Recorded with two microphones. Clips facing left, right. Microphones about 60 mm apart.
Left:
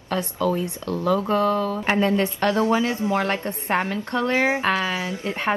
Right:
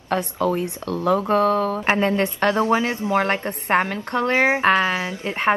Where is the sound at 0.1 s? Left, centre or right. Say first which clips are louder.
Right 2 dB; right.